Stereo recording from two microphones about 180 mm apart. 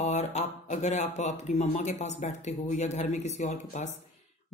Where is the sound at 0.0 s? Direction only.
40° left (ahead or behind).